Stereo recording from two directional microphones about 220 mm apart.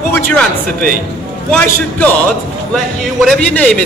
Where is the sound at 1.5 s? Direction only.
5° left (ahead or behind).